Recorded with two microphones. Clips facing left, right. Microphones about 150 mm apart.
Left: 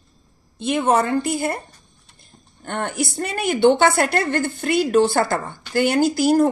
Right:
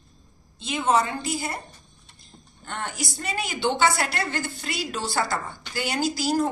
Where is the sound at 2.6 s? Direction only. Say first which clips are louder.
Left 8 dB; 55° left (ahead or behind).